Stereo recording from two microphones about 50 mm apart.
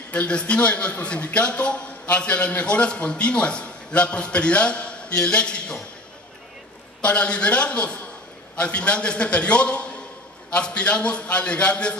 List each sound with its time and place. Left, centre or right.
0.1 s a man's voice: left
7.0 s a man's voice: left